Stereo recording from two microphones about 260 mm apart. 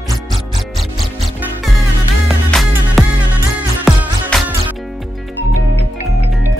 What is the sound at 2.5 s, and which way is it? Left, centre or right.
Music, centre.